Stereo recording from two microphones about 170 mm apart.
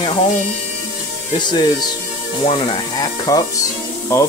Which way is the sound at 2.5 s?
25° left (ahead or behind).